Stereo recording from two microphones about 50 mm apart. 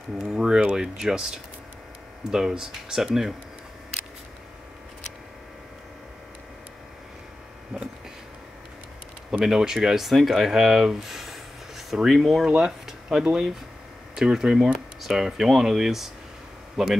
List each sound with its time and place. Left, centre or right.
0.3 s speech: centre
7.7 s a sound: centre
9.4 s speech: centre